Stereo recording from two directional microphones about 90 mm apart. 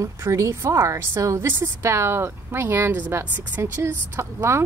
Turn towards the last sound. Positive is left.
turn(degrees=-25)  # may be behind; listen again after turning